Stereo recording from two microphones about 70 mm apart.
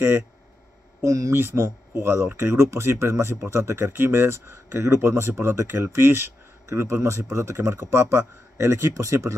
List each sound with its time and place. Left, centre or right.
1.0 s speech: right
1.3 s speech: right
7.0 s speech: right